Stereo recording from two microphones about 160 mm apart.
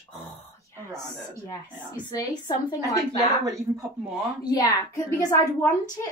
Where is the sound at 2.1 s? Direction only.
25° left (ahead or behind).